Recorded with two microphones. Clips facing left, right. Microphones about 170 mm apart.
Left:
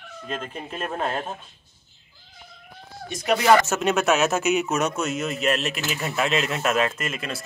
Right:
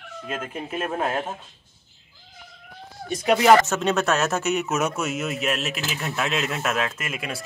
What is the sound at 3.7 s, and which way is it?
Speech, 5° left (ahead or behind).